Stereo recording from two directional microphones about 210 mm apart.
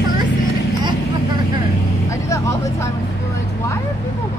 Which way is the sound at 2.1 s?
15° left (ahead or behind).